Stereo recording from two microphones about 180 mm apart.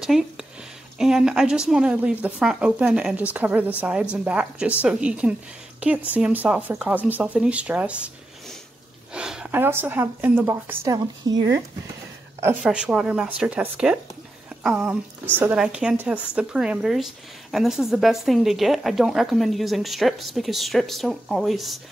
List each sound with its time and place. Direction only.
0.0 s a sound: centre (ahead or behind)
0.9 s a woman's voice: 5° right (ahead or behind); by 11.6 s 20° right (ahead or behind)
12.6 s a woman's voice: 5° right (ahead or behind)